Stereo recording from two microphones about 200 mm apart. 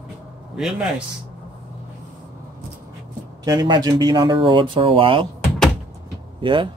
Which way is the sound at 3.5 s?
20° right (ahead or behind).